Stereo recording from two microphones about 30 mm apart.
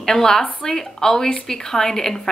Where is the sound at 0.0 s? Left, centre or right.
Centre.